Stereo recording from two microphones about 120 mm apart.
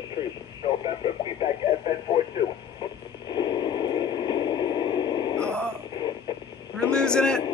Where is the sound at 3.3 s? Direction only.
40° left (ahead or behind).